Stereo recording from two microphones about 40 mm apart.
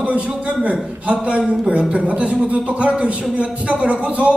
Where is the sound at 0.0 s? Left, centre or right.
Right.